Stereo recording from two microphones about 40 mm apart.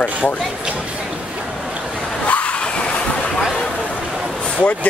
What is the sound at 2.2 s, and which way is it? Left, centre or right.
Vehicle, left.